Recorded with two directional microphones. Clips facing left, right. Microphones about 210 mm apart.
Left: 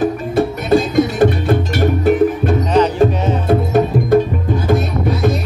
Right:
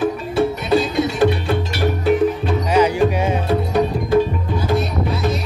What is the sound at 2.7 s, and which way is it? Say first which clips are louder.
Music: left 1 dB; 10° right (ahead or behind).